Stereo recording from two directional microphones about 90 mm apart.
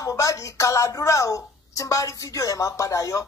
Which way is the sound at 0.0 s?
40° left (ahead or behind).